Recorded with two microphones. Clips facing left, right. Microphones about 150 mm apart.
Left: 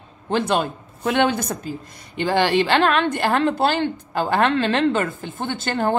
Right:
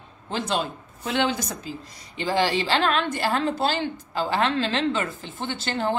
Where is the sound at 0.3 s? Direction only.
60° left (ahead or behind).